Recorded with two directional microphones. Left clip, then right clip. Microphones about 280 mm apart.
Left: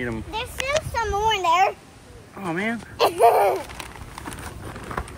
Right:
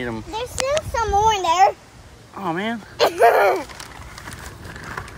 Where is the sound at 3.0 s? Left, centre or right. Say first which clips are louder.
Right 2 dB; right.